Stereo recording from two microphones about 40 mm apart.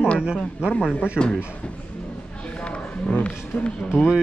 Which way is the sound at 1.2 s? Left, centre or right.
Centre.